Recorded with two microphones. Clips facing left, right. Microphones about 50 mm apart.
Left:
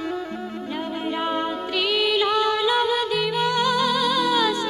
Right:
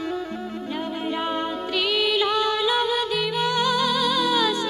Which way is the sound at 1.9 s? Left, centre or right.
Left.